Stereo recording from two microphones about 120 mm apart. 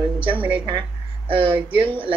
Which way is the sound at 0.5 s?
40° right (ahead or behind).